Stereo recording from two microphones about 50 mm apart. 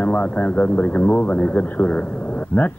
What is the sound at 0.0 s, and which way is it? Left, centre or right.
A man's voice, left.